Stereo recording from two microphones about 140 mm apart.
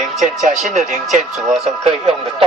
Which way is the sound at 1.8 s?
45° right (ahead or behind).